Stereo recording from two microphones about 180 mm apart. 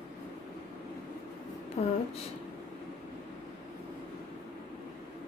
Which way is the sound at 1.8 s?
35° left (ahead or behind).